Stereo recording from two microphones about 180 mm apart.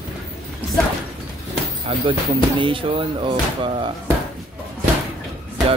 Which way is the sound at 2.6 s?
30° right (ahead or behind).